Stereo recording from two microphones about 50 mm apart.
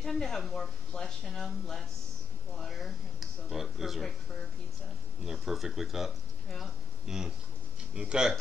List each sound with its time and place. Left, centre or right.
0.0 s speech: centre
2.8 s speech: centre
5.2 s speech: centre
7.9 s speech: centre